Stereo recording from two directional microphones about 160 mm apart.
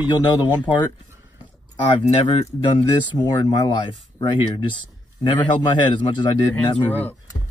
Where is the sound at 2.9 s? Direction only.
25° left (ahead or behind).